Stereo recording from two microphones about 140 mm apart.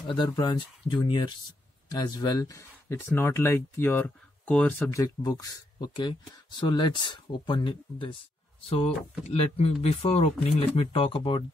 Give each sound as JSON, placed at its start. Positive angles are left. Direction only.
{"t": 0.0, "sound": "speech", "side_deg": 35}
{"t": 4.9, "sound": "speech", "side_deg": 30}